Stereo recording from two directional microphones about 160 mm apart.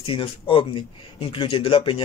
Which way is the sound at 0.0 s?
35° left (ahead or behind).